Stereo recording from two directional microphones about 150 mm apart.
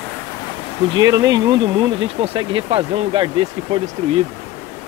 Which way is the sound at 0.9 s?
25° right (ahead or behind).